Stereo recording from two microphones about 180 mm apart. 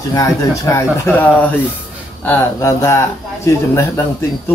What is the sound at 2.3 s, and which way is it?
Speech, 15° left (ahead or behind).